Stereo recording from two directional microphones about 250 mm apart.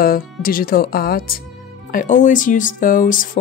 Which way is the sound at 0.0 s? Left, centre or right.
Left.